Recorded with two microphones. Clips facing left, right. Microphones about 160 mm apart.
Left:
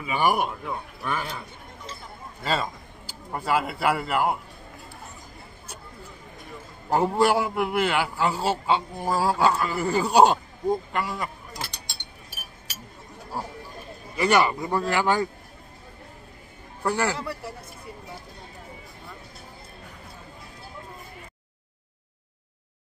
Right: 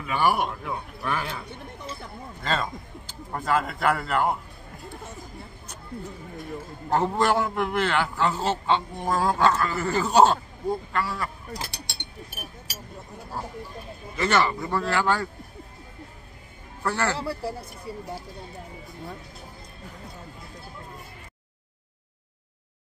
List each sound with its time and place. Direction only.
0.0 s a man's voice: 15° left (ahead or behind)
0.7 s speech: centre (ahead or behind)
2.4 s a man's voice: 10° left (ahead or behind)
6.9 s a man's voice: 10° left (ahead or behind)
11.9 s a sound: 65° right (ahead or behind)
13.4 s a sound: 10° left (ahead or behind)
14.1 s a man's voice: 10° left (ahead or behind)
16.8 s a man's voice: 15° left (ahead or behind)
17.2 s speech: 30° right (ahead or behind)